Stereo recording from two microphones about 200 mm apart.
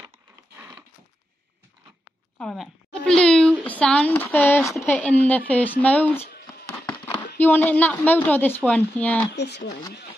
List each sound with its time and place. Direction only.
2.3 s speech: centre (ahead or behind)
3.1 s a sound: 5° left (ahead or behind)
4.8 s a woman's voice: 10° left (ahead or behind)
6.4 s music: 20° left (ahead or behind)
7.3 s a woman's voice: 10° left (ahead or behind)
9.3 s speech: 55° left (ahead or behind)